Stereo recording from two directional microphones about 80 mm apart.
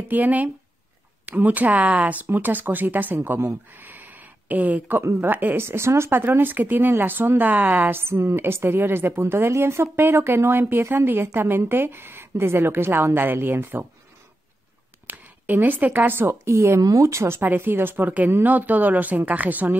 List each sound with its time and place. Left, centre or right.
0.1 s speech: right
15.0 s speech: right